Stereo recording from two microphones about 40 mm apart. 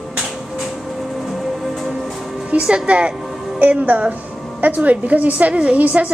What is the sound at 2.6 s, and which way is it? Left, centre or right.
Speech, right.